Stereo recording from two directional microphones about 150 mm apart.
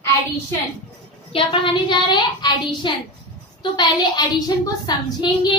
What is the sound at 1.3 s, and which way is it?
A woman's voice, 35° left (ahead or behind).